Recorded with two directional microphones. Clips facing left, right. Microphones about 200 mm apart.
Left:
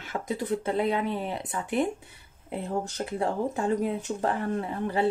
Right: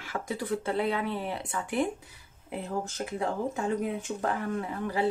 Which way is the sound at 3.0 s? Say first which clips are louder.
Left 3 dB; 35° left (ahead or behind).